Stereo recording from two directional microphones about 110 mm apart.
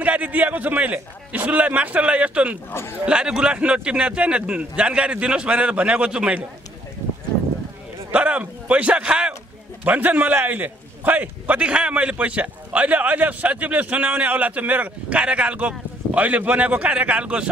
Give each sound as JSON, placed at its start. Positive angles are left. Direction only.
{"t": 0.0, "sound": "a man's voice", "side_deg": -15}
{"t": 2.7, "sound": "speech", "side_deg": 20}
{"t": 3.1, "sound": "a man's voice", "side_deg": -10}
{"t": 8.1, "sound": "a man's voice", "side_deg": -15}